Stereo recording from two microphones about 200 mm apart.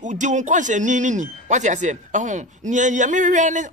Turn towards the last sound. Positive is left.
turn(degrees=-40)  # may be behind; listen again after turning